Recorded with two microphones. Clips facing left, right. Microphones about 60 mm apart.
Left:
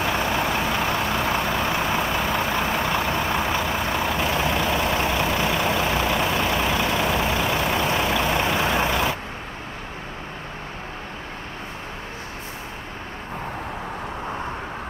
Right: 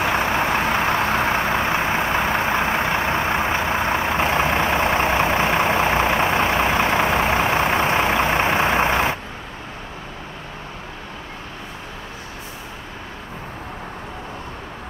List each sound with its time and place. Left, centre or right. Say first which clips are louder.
0.0 s vehicle: right 3 dB; right